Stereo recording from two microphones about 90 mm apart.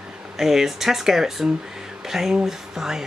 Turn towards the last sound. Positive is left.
turn(degrees=-5)  # may be behind; listen again after turning